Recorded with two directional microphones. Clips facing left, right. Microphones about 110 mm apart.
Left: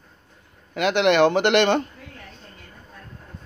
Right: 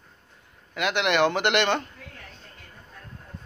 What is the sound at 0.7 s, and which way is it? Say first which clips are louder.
Speech: left 5 dB; 30° left (ahead or behind).